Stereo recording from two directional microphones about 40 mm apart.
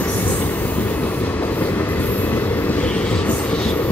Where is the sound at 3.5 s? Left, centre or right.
Left.